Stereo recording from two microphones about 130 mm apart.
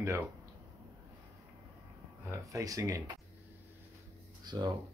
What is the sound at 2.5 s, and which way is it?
Speech, 25° right (ahead or behind).